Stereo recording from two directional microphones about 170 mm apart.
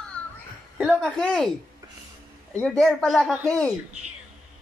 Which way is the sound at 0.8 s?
5° left (ahead or behind).